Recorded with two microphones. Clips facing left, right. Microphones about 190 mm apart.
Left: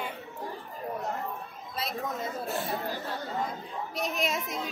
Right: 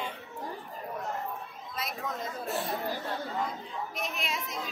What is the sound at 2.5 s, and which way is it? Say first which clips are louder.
Speech: right 1 dB; centre (ahead or behind).